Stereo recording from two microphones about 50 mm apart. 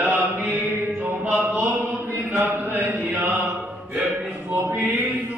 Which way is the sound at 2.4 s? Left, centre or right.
Right.